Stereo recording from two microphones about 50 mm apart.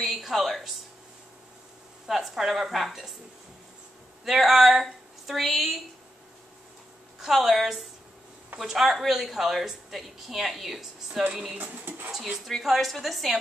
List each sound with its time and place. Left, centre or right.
0.0 s a sound: centre
2.0 s a woman's voice: centre
4.2 s a woman's voice: centre
7.2 s a woman's voice: centre
11.5 s speech: right
12.4 s a woman's voice: centre